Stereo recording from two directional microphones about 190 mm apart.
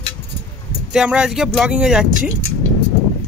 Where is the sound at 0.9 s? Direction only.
5° right (ahead or behind).